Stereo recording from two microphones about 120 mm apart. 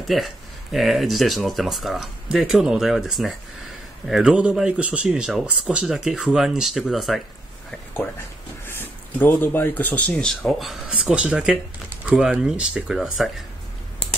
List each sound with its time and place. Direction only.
0.0 s speech: centre (ahead or behind)
8.6 s speech: 20° left (ahead or behind)
10.4 s speech: centre (ahead or behind)